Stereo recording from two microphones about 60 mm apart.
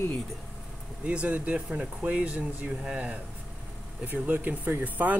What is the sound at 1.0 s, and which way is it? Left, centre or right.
Speech, right.